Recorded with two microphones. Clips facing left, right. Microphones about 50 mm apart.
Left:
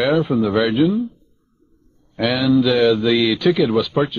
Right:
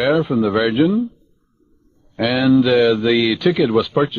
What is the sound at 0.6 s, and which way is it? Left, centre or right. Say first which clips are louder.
Speech: right 1 dB; centre.